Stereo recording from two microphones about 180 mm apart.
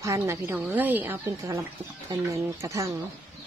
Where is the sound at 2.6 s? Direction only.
15° right (ahead or behind).